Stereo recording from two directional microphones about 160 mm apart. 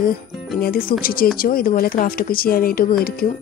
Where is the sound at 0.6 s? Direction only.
65° left (ahead or behind).